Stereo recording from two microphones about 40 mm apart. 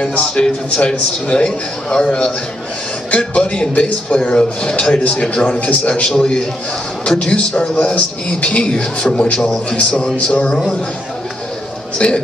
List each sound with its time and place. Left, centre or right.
0.0 s a man's voice: left
6.0 s a man's voice: centre
12.0 s a man's voice: left